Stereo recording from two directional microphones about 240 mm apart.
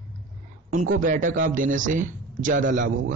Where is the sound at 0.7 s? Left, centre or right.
Right.